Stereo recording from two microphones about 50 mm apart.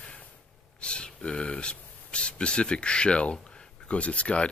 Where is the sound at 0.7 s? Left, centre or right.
Left.